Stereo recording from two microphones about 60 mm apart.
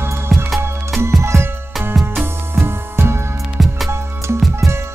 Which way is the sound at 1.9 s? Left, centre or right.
Centre.